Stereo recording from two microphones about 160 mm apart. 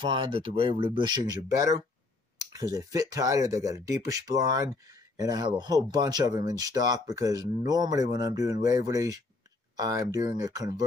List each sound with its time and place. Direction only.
0.0 s speech: 30° right (ahead or behind)